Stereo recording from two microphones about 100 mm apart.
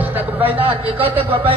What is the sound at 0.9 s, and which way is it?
Speech, 60° right (ahead or behind).